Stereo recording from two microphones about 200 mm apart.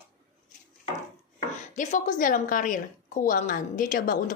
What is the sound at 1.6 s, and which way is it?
A woman's voice, 35° left (ahead or behind).